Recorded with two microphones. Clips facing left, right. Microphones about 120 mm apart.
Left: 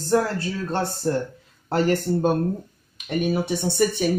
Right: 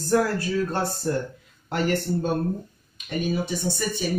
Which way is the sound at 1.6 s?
35° left (ahead or behind).